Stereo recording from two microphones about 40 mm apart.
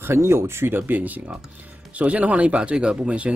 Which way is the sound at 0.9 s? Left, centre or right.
Right.